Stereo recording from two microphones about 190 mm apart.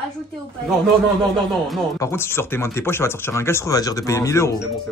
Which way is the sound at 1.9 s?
15° left (ahead or behind).